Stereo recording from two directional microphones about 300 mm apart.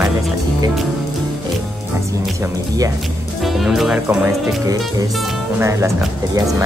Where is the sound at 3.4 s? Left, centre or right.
Centre.